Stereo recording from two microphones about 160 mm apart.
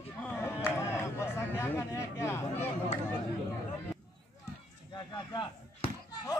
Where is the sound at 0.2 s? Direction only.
15° left (ahead or behind).